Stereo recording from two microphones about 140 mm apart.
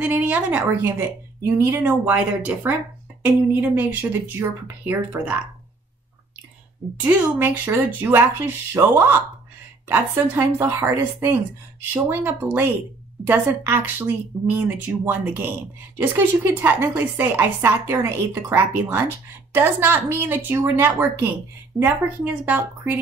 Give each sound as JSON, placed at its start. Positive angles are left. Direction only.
{"t": 0.0, "sound": "a woman's voice", "side_deg": -10}
{"t": 3.7, "sound": "a woman's voice", "side_deg": -15}
{"t": 7.0, "sound": "a woman's voice", "side_deg": -15}